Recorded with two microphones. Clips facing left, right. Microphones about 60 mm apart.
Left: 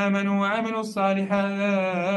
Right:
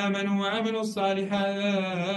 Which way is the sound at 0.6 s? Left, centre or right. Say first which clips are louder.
Left 2 dB; left.